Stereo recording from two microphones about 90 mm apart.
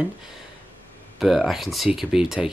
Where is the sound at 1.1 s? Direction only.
Centre (ahead or behind).